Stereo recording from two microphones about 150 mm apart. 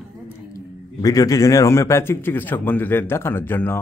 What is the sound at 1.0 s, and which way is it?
A man's voice, 25° left (ahead or behind).